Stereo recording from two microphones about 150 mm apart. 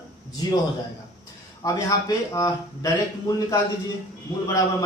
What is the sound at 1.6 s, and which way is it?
Speech, 20° left (ahead or behind).